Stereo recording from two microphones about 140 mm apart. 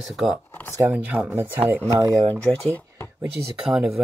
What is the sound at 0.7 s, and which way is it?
Speech, 15° right (ahead or behind).